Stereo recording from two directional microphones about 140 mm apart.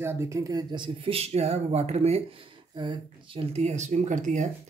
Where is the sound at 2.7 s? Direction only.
35° right (ahead or behind); by 4.4 s 60° right (ahead or behind).